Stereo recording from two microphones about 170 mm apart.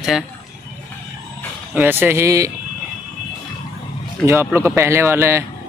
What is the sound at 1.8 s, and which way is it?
Speech, 10° right (ahead or behind).